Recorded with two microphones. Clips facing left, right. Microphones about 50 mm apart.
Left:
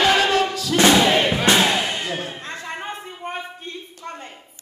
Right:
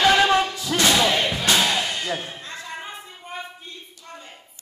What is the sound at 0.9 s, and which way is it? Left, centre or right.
Music, centre.